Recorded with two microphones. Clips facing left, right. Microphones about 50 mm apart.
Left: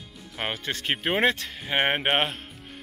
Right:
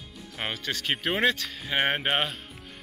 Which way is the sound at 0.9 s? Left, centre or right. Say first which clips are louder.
Left 2 dB; centre.